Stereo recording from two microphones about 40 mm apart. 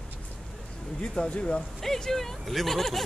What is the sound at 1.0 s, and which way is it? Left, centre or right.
Speech, left.